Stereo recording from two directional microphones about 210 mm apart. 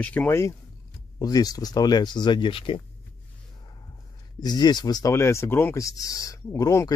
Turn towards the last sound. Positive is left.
turn(degrees=15)  # may be behind; listen again after turning